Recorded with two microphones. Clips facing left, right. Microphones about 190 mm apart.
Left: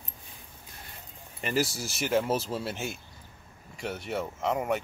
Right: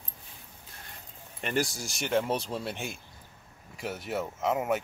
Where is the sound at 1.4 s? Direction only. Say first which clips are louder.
Left 1 dB; 5° left (ahead or behind).